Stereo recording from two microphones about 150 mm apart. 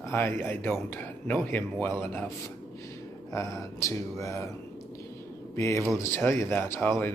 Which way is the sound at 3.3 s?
20° left (ahead or behind).